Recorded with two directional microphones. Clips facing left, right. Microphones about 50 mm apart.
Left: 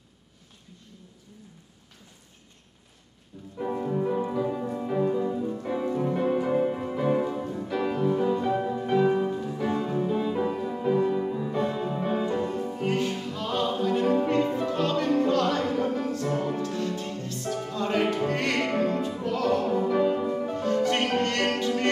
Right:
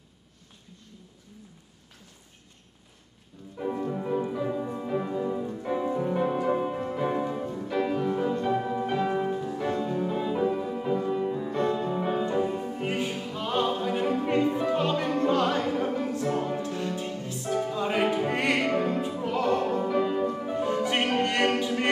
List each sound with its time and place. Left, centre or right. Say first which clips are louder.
3.3 s music: left 1 dB; centre
19.9 s music: left 2 dB; centre
20.5 s music: left 1 dB; centre